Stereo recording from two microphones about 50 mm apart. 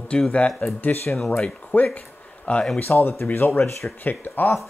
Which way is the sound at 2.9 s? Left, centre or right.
Left.